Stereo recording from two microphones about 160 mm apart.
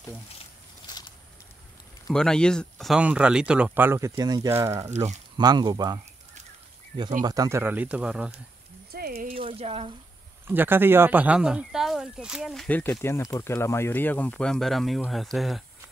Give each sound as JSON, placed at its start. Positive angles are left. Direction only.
{"t": 2.1, "sound": "speech", "side_deg": 5}
{"t": 4.9, "sound": "speech", "side_deg": -45}
{"t": 5.4, "sound": "speech", "side_deg": -25}
{"t": 7.2, "sound": "speech", "side_deg": -20}
{"t": 8.9, "sound": "a sound", "side_deg": -70}
{"t": 9.3, "sound": "speech", "side_deg": -35}
{"t": 10.4, "sound": "speech", "side_deg": -15}
{"t": 12.6, "sound": "speech", "side_deg": 10}